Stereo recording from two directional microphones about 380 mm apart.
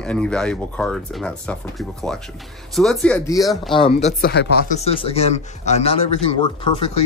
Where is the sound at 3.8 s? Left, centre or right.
Centre.